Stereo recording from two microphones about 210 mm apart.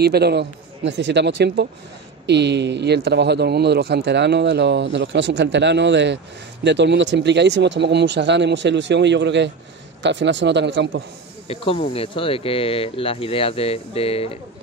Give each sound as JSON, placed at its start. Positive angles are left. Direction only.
{"t": 0.0, "sound": "a man's voice", "side_deg": -50}
{"t": 11.4, "sound": "speech", "side_deg": 30}